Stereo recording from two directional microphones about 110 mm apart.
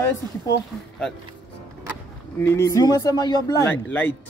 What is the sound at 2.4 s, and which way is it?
Speech, 25° left (ahead or behind).